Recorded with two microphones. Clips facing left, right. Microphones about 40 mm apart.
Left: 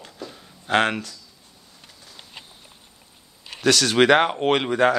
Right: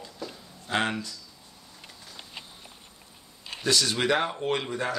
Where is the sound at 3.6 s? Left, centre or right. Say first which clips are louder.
Left 8 dB; left.